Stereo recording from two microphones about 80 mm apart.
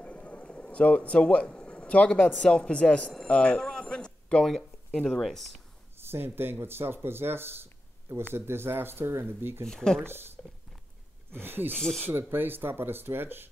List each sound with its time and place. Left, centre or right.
0.0 s a sound: centre
2.3 s speech: centre
5.9 s speech: right
9.7 s speech: centre
10.0 s speech: right
11.4 s speech: right
11.8 s speech: centre
12.1 s speech: right